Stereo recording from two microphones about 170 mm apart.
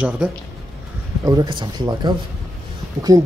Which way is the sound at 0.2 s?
5° right (ahead or behind).